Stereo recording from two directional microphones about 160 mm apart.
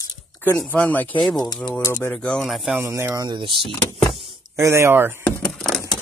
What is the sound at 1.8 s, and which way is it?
Speech, 15° left (ahead or behind).